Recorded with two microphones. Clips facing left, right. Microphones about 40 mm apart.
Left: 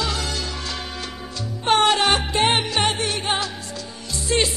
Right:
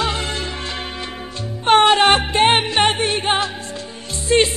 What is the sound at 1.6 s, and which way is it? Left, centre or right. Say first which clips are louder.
Music: right 5 dB; right.